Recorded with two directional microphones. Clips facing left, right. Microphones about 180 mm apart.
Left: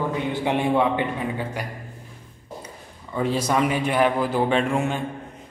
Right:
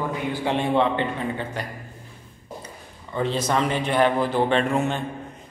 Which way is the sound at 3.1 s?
10° left (ahead or behind).